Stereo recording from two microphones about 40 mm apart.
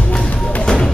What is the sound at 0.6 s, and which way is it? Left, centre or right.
Music, left.